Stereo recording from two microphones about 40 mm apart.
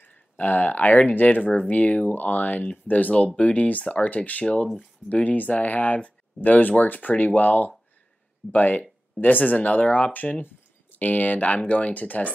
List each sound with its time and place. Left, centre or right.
0.0 s speech: left
11.0 s speech: left